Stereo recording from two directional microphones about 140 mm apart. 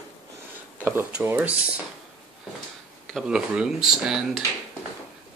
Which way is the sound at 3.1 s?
5° right (ahead or behind).